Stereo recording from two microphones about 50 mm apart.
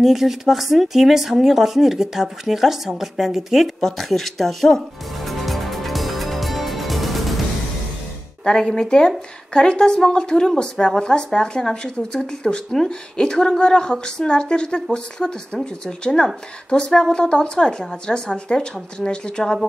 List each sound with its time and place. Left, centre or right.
0.0 s speech: centre
3.8 s music: centre
8.5 s speech: centre